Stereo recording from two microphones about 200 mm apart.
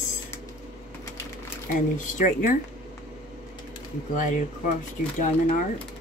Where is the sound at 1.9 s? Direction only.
40° left (ahead or behind).